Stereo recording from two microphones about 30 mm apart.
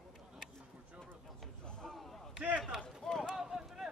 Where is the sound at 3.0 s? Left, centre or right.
Centre.